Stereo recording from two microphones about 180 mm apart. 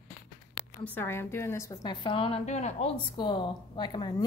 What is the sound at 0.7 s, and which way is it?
Speech, 10° left (ahead or behind).